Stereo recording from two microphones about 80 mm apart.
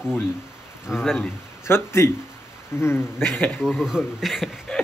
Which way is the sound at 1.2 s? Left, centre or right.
Left.